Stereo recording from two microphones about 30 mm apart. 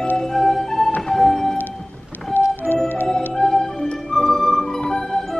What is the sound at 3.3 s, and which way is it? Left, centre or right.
Music, centre.